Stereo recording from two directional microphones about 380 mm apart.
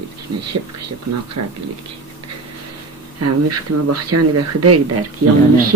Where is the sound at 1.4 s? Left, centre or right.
Right.